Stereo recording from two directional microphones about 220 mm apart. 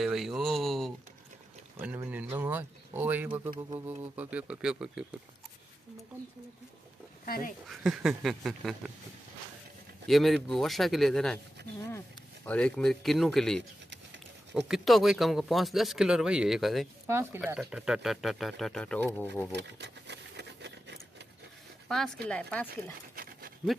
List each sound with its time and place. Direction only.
0.0 s a sound: centre (ahead or behind)
1.8 s speech: 10° right (ahead or behind)
3.4 s music: 20° right (ahead or behind)
3.8 s speech: 10° right (ahead or behind)
7.2 s speech: 40° left (ahead or behind)
7.6 s speech: centre (ahead or behind)
10.0 s speech: centre (ahead or behind)
12.4 s speech: 5° left (ahead or behind)
14.7 s speech: centre (ahead or behind)
19.5 s a sound: 50° right (ahead or behind)
21.8 s speech: centre (ahead or behind)